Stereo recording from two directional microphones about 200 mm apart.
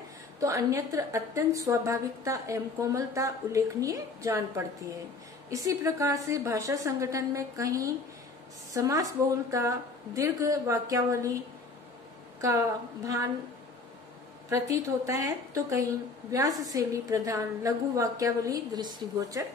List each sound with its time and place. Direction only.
0.4 s a woman's voice: 15° right (ahead or behind)
14.5 s a woman's voice: 15° right (ahead or behind)